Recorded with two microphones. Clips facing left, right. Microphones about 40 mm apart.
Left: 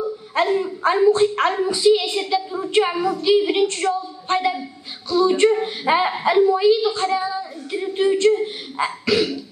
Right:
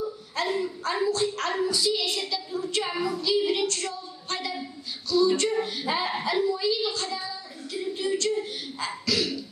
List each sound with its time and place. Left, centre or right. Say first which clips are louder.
0.6 s a woman's voice: left 9 dB; left